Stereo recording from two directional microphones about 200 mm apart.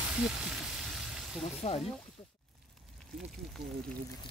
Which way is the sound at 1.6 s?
30° left (ahead or behind).